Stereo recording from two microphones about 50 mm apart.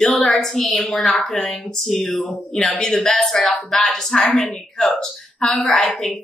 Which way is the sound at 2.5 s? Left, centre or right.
Centre.